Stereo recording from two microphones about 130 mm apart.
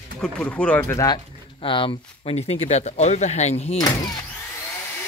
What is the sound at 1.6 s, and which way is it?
Speech, 40° left (ahead or behind).